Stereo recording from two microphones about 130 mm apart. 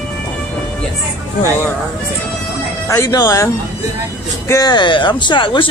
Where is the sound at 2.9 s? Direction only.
25° left (ahead or behind).